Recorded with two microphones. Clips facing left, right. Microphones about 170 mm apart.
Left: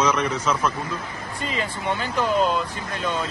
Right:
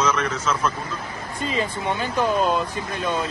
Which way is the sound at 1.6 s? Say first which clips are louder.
Right 2 dB; 15° right (ahead or behind).